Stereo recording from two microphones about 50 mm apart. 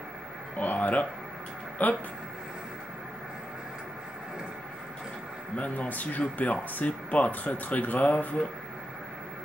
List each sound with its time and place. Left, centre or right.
0.6 s a sound: left
1.8 s speech: left
5.6 s speech: left